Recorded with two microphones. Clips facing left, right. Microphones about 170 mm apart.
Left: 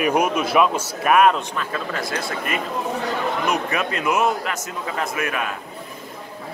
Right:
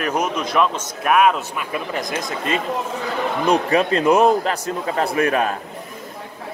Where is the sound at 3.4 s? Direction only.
30° right (ahead or behind).